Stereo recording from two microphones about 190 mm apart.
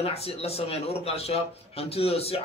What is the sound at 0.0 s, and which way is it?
A man's voice, 30° left (ahead or behind).